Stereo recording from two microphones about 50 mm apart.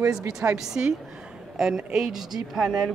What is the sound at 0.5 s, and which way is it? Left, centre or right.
A woman's voice, centre.